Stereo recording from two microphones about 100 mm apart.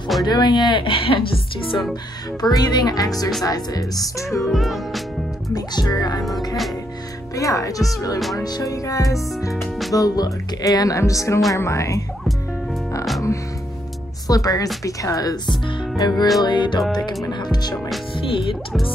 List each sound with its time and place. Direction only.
0.2 s speech: 45° left (ahead or behind); by 1.8 s 65° left (ahead or behind)
2.4 s speech: 45° left (ahead or behind)
4.3 s music: centre (ahead or behind)
5.5 s speech: 45° left (ahead or behind)
6.5 s music: centre (ahead or behind)
7.3 s speech: 35° left (ahead or behind)
14.2 s speech: 35° left (ahead or behind)
18.1 s speech: 65° left (ahead or behind)